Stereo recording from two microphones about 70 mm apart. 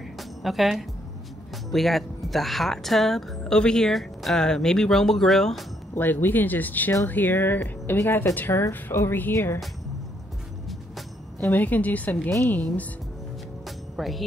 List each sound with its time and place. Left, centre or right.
0.2 s music: centre
1.7 s speech: centre
5.9 s a woman's voice: left
11.4 s speech: left
13.7 s music: centre